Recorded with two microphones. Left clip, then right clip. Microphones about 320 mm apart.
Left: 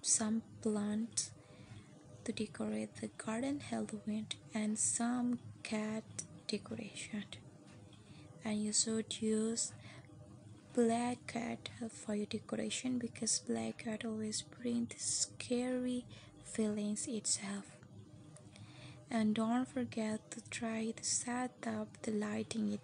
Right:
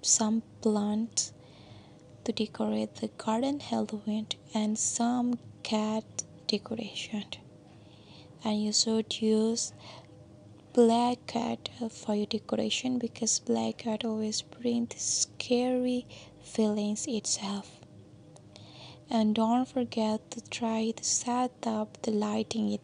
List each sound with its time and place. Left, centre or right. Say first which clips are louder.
0.0 s a woman's voice: right 9 dB; right
8.4 s a woman's voice: right 9 dB; right
18.8 s a woman's voice: right 9 dB; right